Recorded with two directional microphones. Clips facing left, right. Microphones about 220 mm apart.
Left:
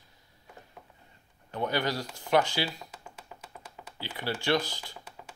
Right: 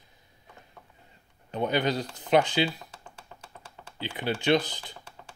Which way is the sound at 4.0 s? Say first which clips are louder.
Right 4 dB; 20° right (ahead or behind).